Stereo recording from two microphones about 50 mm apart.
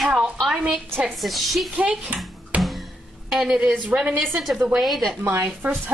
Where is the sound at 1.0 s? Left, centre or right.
Centre.